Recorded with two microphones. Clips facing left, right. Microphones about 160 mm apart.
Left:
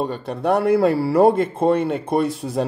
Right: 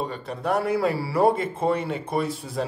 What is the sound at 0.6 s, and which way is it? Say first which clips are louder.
A man's voice: left 7 dB; 55° left (ahead or behind).